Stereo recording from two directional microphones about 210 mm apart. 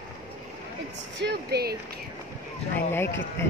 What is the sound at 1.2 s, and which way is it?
Speech, 50° right (ahead or behind).